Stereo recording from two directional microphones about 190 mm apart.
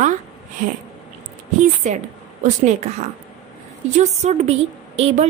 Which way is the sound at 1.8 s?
40° right (ahead or behind).